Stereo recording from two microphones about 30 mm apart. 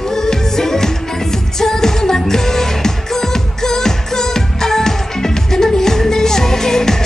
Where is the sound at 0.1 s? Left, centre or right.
Centre.